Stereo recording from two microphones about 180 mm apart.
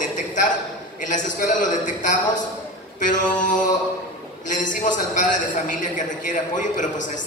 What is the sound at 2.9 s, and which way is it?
Mantra, 45° left (ahead or behind).